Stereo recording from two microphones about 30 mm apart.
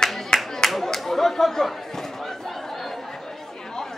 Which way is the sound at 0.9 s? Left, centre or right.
Centre.